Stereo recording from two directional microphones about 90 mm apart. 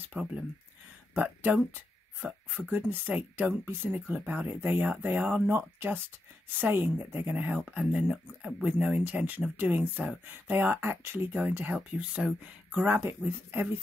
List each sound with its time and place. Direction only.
0.0 s speech: 15° right (ahead or behind)